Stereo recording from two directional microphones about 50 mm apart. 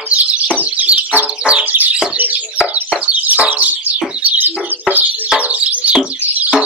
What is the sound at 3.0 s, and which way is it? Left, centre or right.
Music, right.